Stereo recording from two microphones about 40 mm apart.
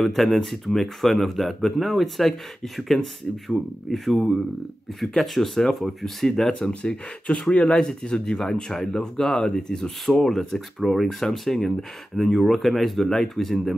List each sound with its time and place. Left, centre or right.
0.0 s speech: centre
6.8 s speech: left; by 13.7 s centre